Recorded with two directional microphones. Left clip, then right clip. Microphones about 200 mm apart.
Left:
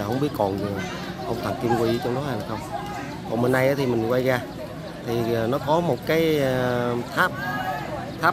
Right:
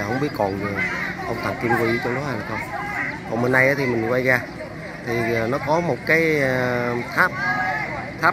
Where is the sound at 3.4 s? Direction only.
Centre (ahead or behind).